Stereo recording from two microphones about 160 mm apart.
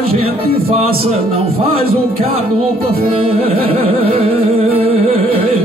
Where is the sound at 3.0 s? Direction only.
40° right (ahead or behind).